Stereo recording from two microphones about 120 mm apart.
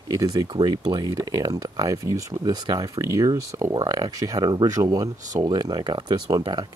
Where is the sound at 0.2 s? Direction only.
40° right (ahead or behind).